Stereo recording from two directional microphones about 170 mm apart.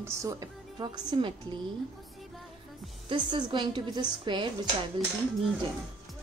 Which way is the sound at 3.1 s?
25° right (ahead or behind).